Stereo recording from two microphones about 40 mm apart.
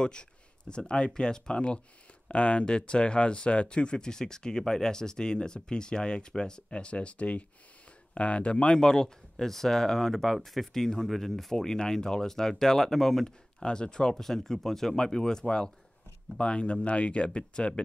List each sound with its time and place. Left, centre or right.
0.0 s speech: left
8.7 s speech: centre
11.5 s speech: centre
13.6 s speech: left
14.1 s speech: centre; by 17.8 s left